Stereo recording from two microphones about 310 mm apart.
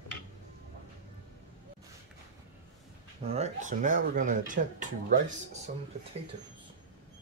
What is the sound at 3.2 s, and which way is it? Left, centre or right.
Speech, centre.